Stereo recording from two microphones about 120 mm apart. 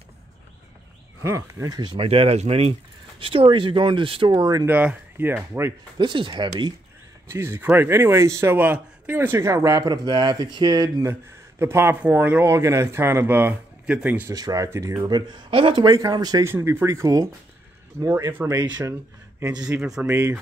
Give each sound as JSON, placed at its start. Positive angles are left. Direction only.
{"t": 1.2, "sound": "speech", "side_deg": -25}
{"t": 2.0, "sound": "speech", "side_deg": -55}
{"t": 4.4, "sound": "speech", "side_deg": -30}
{"t": 4.6, "sound": "speech", "side_deg": -15}
{"t": 5.9, "sound": "speech", "side_deg": -40}
{"t": 7.2, "sound": "speech", "side_deg": -20}
{"t": 14.3, "sound": "speech", "side_deg": -30}
{"t": 15.9, "sound": "speech", "side_deg": -30}
{"t": 16.4, "sound": "speech", "side_deg": -20}
{"t": 19.7, "sound": "speech", "side_deg": -20}